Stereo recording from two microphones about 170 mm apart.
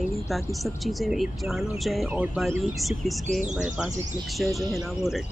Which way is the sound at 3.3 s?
45° right (ahead or behind).